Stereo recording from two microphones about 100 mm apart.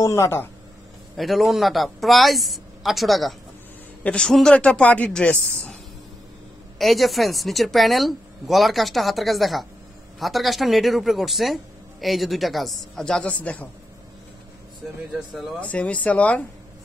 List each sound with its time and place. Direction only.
0.0 s speech: 25° left (ahead or behind)
1.1 s speech: centre (ahead or behind)
6.8 s speech: centre (ahead or behind)
15.1 s speech: centre (ahead or behind)
15.6 s speech: 15° left (ahead or behind)